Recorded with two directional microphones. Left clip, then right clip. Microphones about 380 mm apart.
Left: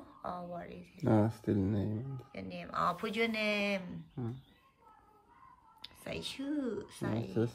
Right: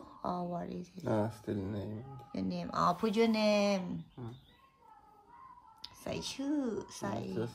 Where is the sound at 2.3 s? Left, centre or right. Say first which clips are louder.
Right 2 dB; centre.